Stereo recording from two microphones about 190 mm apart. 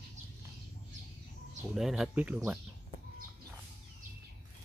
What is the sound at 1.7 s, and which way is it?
Speech, centre (ahead or behind).